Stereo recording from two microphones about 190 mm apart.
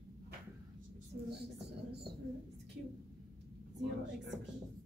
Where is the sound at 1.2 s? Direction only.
60° right (ahead or behind).